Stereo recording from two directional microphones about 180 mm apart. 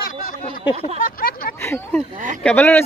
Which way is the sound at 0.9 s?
50° left (ahead or behind).